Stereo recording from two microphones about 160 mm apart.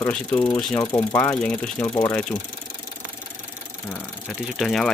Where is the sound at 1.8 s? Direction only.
25° left (ahead or behind).